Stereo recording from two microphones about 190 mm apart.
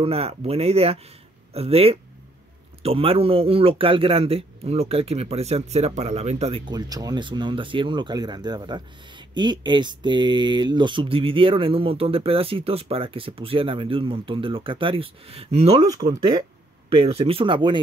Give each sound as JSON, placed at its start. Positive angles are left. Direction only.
{"t": 0.0, "sound": "speech", "side_deg": -30}
{"t": 15.8, "sound": "speech", "side_deg": -20}